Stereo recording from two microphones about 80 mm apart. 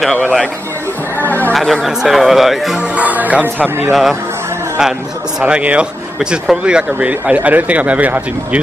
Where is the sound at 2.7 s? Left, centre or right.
Centre.